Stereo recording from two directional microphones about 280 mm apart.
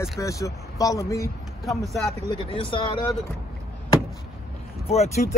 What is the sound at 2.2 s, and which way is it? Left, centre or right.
Speech, centre.